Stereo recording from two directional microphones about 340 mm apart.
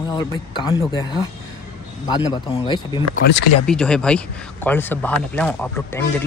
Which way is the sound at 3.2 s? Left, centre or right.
Left.